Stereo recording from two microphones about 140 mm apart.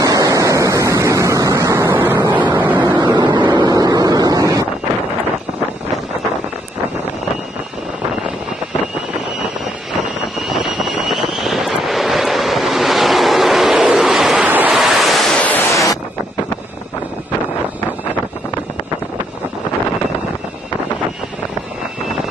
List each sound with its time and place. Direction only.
0.0 s a sound: 25° right (ahead or behind)
2.5 s vehicle: 15° right (ahead or behind)
3.0 s wind noise: 30° right (ahead or behind)
10.4 s vehicle: centre (ahead or behind)
14.8 s waves: centre (ahead or behind)
15.7 s a sound: 25° left (ahead or behind)